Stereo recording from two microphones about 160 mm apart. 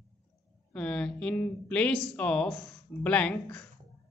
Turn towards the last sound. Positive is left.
turn(degrees=5)  # may be behind; listen again after turning